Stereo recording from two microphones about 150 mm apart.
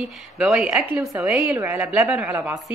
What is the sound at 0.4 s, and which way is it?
A woman's voice, 5° right (ahead or behind).